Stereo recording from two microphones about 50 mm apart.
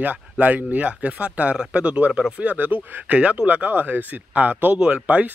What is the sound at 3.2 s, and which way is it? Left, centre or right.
Speech, right.